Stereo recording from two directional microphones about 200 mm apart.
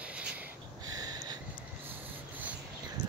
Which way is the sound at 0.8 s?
20° right (ahead or behind).